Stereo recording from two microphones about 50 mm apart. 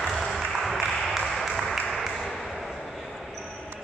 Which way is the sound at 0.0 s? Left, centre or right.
Centre.